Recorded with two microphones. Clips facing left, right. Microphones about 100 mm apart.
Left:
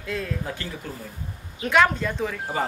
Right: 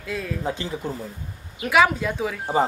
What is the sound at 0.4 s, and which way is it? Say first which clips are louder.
Speech: right 5 dB; 20° right (ahead or behind).